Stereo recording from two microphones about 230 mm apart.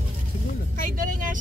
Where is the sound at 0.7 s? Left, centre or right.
Right.